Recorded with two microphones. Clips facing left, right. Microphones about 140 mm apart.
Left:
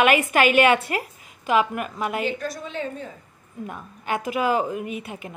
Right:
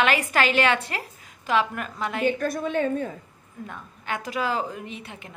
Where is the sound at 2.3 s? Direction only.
50° right (ahead or behind).